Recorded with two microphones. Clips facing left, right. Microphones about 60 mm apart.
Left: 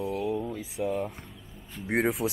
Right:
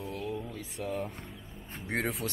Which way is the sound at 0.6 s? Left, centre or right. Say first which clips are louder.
Left 5 dB; centre.